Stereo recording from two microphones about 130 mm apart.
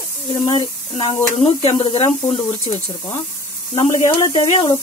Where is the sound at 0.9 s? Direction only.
50° left (ahead or behind).